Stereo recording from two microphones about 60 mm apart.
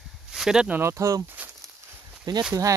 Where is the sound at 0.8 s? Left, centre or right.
Right.